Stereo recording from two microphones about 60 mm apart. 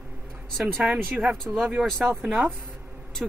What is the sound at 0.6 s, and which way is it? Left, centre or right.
Speech, centre.